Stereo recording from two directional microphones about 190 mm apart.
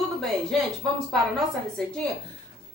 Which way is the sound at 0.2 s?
Centre (ahead or behind).